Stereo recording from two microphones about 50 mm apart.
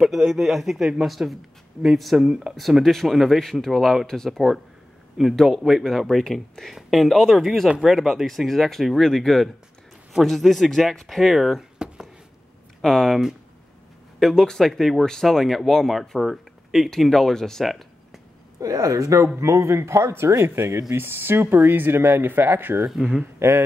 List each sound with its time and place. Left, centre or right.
0.3 s speech: centre
2.1 s speech: centre
2.8 s speech: centre
12.8 s speech: centre
14.2 s speech: centre
17.6 s a sound: centre
18.7 s speech: right
19.2 s speech: right
23.0 s speech: right
23.4 s speech: right